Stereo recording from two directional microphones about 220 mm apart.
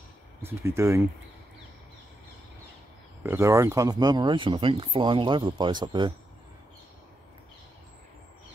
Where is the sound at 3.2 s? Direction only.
10° right (ahead or behind).